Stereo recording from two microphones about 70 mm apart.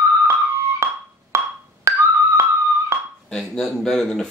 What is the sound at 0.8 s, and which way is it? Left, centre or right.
Wood block, right.